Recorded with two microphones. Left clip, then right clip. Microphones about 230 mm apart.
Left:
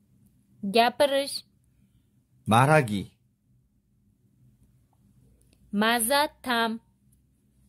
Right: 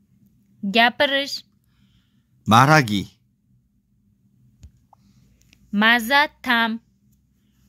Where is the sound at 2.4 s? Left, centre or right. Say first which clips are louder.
Right 6 dB; centre.